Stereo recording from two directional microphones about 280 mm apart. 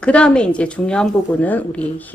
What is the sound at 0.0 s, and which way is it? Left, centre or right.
A woman's voice, centre.